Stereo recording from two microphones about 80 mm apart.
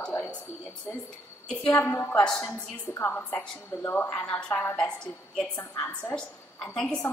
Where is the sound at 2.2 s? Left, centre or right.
Centre.